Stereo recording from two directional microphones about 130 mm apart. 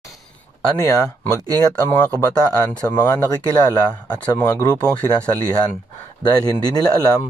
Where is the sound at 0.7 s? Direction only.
25° left (ahead or behind).